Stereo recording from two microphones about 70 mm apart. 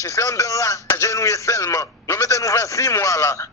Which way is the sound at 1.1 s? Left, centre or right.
Left.